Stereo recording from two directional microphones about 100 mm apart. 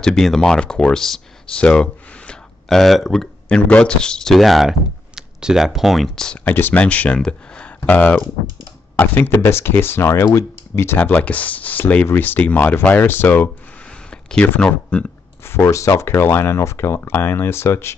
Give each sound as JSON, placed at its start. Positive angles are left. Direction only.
{"t": 0.0, "sound": "speech", "side_deg": 5}
{"t": 14.1, "sound": "a sound", "side_deg": 10}
{"t": 14.6, "sound": "speech", "side_deg": 10}
{"t": 15.4, "sound": "speech", "side_deg": 30}